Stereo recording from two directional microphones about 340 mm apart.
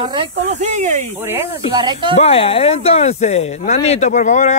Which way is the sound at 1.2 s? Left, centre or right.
Centre.